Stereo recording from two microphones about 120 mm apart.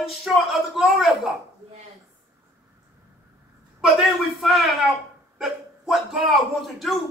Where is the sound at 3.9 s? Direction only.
Centre (ahead or behind).